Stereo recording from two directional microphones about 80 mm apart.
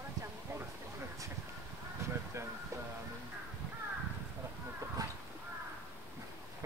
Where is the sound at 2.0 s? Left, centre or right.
Right.